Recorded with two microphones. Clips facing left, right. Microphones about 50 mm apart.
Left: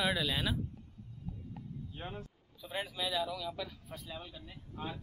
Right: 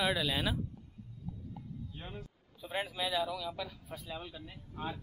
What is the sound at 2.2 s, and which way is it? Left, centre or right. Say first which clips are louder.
Speech: even; centre.